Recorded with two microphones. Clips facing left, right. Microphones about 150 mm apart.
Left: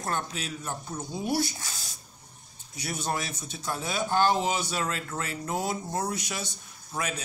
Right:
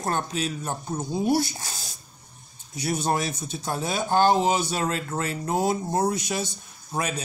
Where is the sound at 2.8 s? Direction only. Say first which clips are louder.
Right 7 dB; 40° right (ahead or behind).